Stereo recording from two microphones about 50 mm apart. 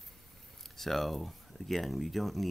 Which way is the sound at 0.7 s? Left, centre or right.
Centre.